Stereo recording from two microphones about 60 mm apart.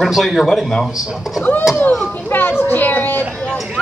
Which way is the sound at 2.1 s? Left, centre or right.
Left.